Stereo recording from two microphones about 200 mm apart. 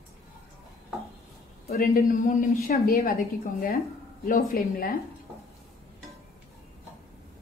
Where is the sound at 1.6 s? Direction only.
50° left (ahead or behind).